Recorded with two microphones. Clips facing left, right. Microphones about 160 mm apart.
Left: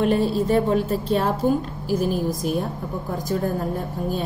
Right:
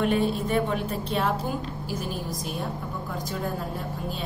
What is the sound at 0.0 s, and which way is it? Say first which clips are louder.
A woman's voice: left 4 dB; 35° left (ahead or behind).